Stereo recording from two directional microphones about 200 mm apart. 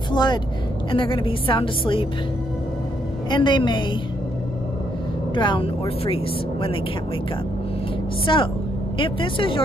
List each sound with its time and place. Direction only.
0.1 s a woman's voice: 20° left (ahead or behind)
3.3 s a woman's voice: 20° left (ahead or behind)
5.3 s a woman's voice: 25° left (ahead or behind)
8.3 s a woman's voice: 25° left (ahead or behind)